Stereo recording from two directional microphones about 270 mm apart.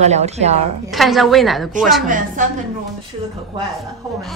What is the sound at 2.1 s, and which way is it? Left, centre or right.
Speech, right.